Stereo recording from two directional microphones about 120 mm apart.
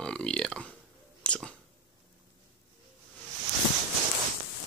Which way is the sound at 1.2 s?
10° left (ahead or behind).